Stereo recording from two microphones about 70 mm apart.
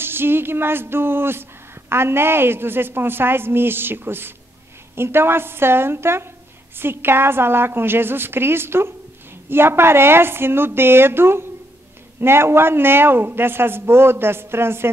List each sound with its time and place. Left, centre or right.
0.0 s a woman's voice: right